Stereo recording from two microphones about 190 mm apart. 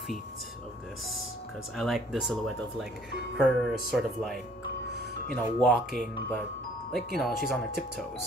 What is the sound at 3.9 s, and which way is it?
Speech, centre (ahead or behind).